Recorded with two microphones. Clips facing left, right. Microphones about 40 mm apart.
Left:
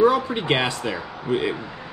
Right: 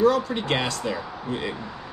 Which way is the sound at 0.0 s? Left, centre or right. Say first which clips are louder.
Left 2 dB; centre.